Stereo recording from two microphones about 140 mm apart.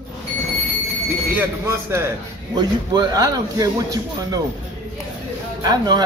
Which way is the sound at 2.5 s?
30° right (ahead or behind).